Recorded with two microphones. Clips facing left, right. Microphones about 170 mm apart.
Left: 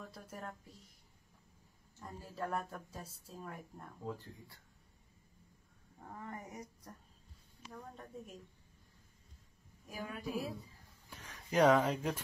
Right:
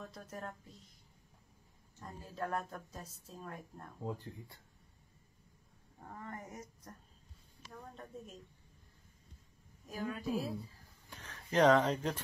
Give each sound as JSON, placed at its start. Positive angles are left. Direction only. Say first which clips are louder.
{"t": 0.1, "sound": "a woman's voice", "louder": "right 2 dB", "side_deg": 10}
{"t": 2.0, "sound": "a woman's voice", "louder": "right 1 dB", "side_deg": 10}
{"t": 4.0, "sound": "speech", "louder": "right 3 dB", "side_deg": -20}
{"t": 6.0, "sound": "a woman's voice", "louder": "even", "side_deg": 10}
{"t": 7.9, "sound": "a woman's voice", "louder": "even", "side_deg": 10}
{"t": 9.8, "sound": "a woman's voice", "louder": "right 4 dB", "side_deg": 10}